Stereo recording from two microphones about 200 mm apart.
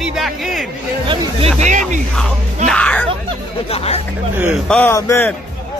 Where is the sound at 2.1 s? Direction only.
5° left (ahead or behind).